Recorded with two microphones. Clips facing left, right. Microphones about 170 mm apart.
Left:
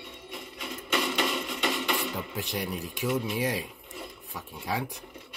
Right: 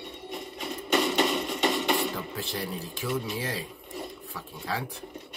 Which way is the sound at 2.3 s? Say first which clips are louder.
Left 1 dB; 15° left (ahead or behind).